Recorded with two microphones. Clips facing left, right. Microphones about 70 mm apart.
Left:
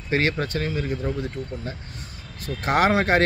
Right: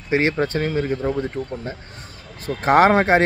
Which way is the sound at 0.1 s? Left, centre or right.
Right.